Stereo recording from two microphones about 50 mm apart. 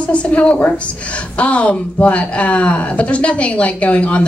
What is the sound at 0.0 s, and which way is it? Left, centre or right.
Speech, left.